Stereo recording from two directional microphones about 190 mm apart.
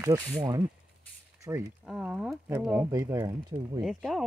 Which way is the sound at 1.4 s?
15° right (ahead or behind).